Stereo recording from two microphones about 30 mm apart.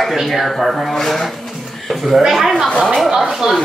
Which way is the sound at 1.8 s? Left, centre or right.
Centre.